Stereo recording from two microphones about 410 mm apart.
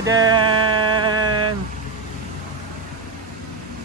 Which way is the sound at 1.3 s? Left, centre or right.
Right.